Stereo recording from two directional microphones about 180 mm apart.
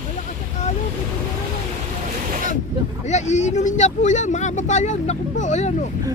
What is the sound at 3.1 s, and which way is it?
Speech, 40° left (ahead or behind).